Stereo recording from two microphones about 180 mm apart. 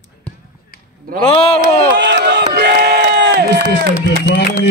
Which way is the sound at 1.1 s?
55° right (ahead or behind).